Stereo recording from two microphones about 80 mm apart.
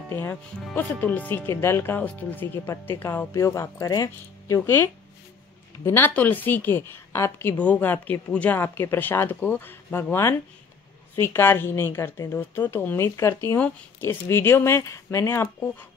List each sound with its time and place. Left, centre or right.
0.1 s a woman's voice: left
4.6 s a woman's voice: left
8.5 s a woman's voice: left